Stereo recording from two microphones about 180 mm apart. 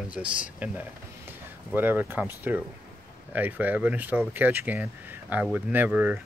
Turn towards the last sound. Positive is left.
turn(degrees=-10)  # may be behind; listen again after turning